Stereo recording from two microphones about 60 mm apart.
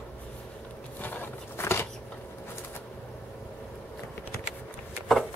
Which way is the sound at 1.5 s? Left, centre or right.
Left.